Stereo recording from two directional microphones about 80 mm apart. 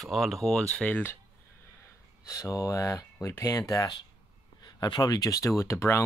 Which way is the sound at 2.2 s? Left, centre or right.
Left.